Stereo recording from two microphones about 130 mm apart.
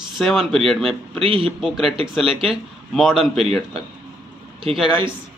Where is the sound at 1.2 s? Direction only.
45° right (ahead or behind).